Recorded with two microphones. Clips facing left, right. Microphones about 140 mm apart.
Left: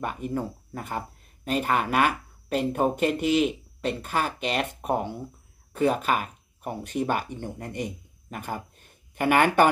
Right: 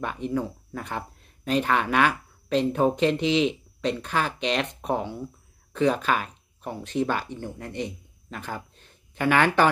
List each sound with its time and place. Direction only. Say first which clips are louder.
0.4 s speech: right 2 dB; 5° left (ahead or behind)